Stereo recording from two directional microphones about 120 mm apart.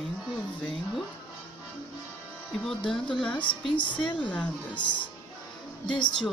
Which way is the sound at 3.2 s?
5° left (ahead or behind).